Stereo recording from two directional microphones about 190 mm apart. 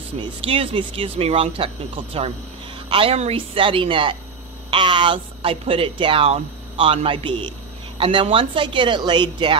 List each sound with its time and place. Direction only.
0.2 s speech: 30° right (ahead or behind)